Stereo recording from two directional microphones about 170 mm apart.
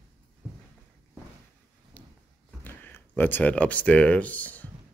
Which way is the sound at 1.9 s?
10° left (ahead or behind).